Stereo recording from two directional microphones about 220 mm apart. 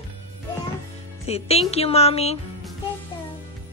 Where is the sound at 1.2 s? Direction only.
30° left (ahead or behind).